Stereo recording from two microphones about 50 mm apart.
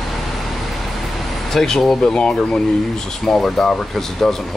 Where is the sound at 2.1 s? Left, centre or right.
Centre.